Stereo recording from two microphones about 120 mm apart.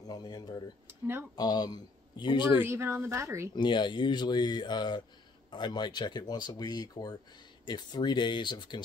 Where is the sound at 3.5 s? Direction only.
40° left (ahead or behind).